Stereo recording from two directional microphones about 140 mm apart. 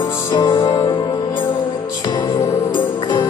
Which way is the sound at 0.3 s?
25° left (ahead or behind).